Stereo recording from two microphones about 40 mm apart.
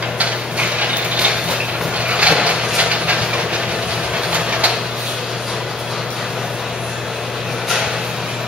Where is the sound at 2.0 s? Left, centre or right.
Right.